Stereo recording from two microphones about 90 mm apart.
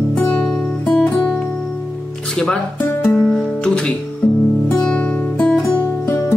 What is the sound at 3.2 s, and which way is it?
Guitar, 10° left (ahead or behind).